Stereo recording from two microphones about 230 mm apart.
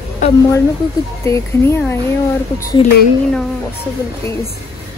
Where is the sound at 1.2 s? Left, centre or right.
Centre.